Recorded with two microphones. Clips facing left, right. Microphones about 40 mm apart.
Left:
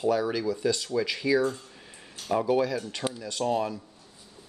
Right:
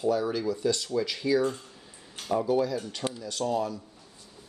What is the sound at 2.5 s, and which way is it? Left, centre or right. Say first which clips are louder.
Speech: left 1 dB; left.